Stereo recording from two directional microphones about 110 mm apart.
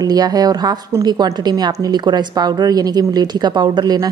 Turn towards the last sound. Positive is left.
turn(degrees=-35)  # may be behind; listen again after turning